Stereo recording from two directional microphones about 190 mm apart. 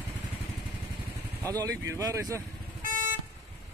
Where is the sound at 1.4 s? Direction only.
20° right (ahead or behind).